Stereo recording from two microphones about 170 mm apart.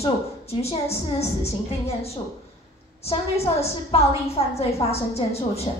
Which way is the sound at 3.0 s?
35° left (ahead or behind).